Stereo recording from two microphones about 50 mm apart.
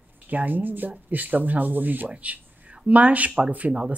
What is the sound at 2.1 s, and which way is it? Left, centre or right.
Speech, right.